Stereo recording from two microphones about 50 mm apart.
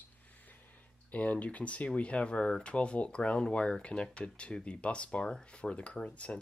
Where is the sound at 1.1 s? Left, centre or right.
Left.